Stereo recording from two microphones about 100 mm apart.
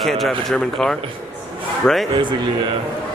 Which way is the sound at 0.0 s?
Centre (ahead or behind).